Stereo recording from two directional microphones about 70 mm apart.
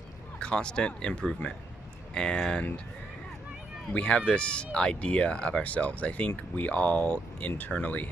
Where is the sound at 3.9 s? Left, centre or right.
Centre.